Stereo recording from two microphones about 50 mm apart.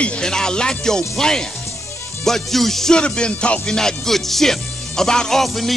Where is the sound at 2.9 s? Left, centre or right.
Centre.